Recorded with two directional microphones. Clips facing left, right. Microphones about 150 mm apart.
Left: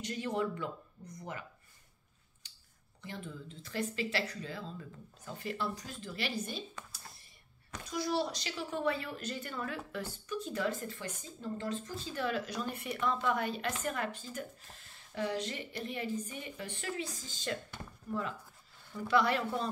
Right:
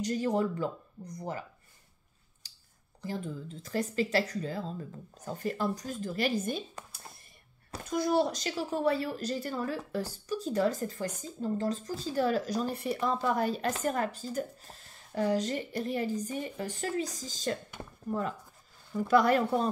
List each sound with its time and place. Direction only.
0.0 s speech: 40° right (ahead or behind)
2.4 s scissors: 35° right (ahead or behind)
3.0 s a woman's voice: 35° right (ahead or behind)